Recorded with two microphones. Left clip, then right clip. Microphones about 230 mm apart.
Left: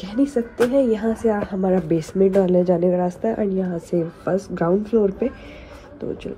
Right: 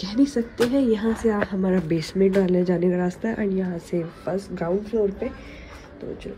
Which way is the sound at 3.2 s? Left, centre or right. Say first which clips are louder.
Left 5 dB; left.